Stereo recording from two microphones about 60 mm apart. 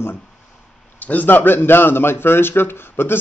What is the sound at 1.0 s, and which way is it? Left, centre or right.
A man's voice, left.